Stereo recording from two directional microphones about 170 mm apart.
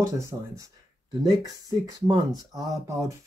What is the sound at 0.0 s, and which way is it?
Speech, 15° right (ahead or behind).